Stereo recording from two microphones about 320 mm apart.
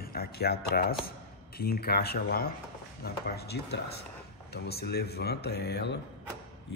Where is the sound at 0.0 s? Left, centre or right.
Left.